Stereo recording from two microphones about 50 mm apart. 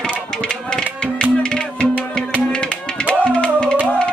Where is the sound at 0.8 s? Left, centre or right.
Centre.